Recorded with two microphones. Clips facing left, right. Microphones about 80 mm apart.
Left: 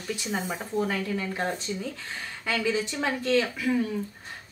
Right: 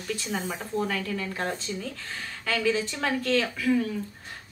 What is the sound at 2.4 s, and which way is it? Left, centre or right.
A woman's voice, centre.